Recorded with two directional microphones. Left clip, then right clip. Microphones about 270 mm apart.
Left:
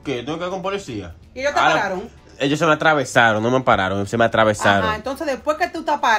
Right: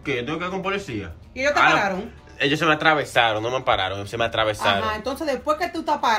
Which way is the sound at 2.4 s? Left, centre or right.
Left.